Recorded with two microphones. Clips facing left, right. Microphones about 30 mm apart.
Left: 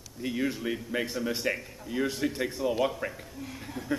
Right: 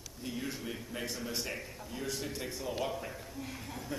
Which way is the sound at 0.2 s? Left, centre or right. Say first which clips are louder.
Left 9 dB; left.